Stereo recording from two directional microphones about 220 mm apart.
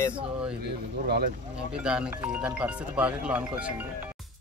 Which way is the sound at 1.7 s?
5° right (ahead or behind).